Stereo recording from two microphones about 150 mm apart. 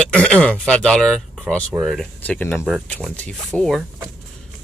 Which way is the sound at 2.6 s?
Centre (ahead or behind).